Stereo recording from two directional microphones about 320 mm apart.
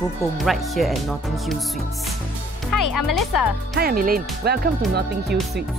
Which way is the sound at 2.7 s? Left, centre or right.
Left.